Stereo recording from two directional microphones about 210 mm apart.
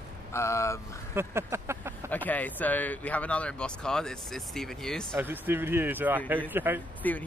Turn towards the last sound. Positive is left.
turn(degrees=10)  # may be behind; listen again after turning